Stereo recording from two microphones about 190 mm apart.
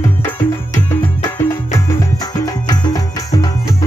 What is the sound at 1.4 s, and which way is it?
Music, 15° left (ahead or behind).